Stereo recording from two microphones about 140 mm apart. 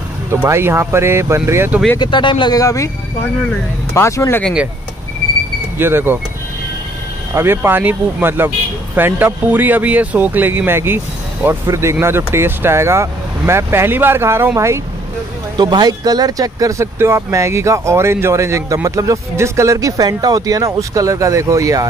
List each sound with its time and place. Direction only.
0.4 s speech: 15° right (ahead or behind)
2.0 s speech: 35° left (ahead or behind)
3.9 s speech: 20° left (ahead or behind)
5.8 s speech: 15° right (ahead or behind)
7.3 s speech: 15° right (ahead or behind)
15.5 s speech: 30° right (ahead or behind)